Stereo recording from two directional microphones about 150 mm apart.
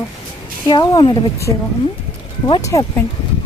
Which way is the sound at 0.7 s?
30° left (ahead or behind).